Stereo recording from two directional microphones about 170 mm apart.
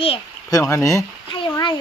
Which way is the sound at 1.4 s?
25° left (ahead or behind).